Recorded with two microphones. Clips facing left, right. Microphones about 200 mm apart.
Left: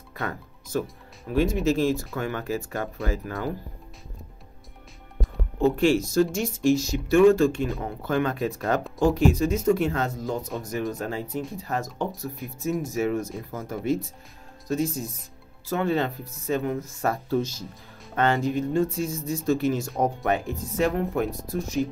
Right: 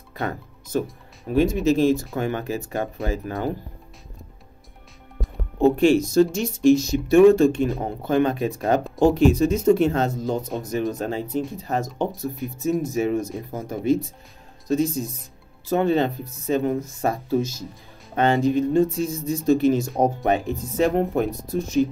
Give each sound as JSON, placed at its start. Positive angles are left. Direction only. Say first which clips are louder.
{"t": 0.2, "sound": "speech", "louder": "right 4 dB", "side_deg": -20}
{"t": 5.8, "sound": "speech", "louder": "right 4 dB", "side_deg": -20}
{"t": 12.9, "sound": "speech", "louder": "right 3 dB", "side_deg": -15}